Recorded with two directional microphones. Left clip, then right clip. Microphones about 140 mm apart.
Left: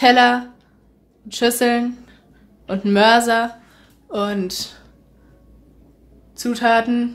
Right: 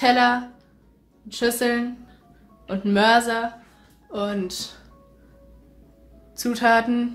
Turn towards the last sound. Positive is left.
turn(degrees=10)  # may be behind; listen again after turning